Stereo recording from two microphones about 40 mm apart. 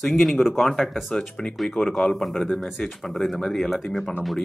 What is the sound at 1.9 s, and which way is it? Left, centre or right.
Speech, centre.